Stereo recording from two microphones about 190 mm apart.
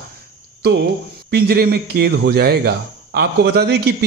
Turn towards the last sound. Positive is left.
turn(degrees=-55)  # may be behind; listen again after turning